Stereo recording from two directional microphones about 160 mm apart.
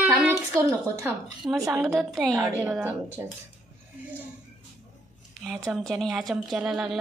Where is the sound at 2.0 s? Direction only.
Centre (ahead or behind).